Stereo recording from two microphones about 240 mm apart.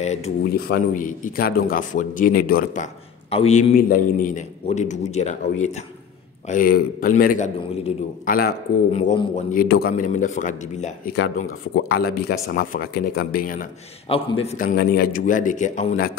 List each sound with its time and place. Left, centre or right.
0.0 s speech: left
0.5 s a man's voice: left
8.9 s speech: left
9.5 s a man's voice: left
11.7 s a man's voice: left
14.1 s a man's voice: left